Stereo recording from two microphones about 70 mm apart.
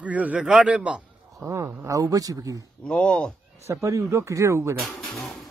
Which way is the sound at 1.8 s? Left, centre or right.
Right.